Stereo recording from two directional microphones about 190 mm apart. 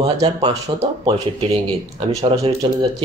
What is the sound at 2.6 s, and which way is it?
Speech, 25° right (ahead or behind).